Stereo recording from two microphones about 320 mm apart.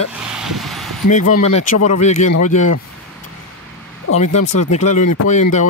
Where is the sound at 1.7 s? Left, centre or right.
Left.